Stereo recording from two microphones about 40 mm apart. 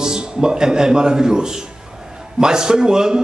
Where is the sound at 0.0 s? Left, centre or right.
Centre.